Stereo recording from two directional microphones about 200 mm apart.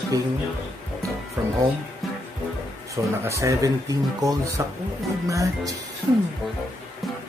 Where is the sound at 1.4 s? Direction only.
10° right (ahead or behind).